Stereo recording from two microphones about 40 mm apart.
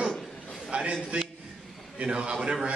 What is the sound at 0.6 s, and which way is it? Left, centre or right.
Speech, right.